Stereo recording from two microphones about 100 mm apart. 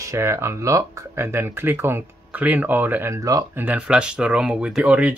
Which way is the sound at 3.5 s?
15° right (ahead or behind).